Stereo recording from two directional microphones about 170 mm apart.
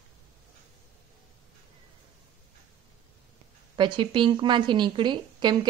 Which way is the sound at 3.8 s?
30° right (ahead or behind).